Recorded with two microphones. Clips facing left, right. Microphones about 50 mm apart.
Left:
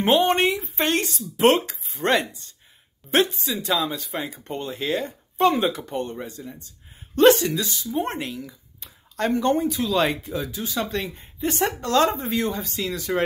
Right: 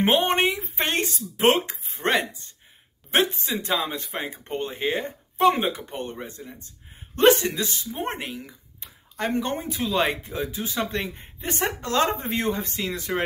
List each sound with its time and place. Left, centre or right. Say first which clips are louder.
0.0 s speech: left 2 dB; right
3.3 s speech: left 1 dB; right
12.1 s speech: left 1 dB; right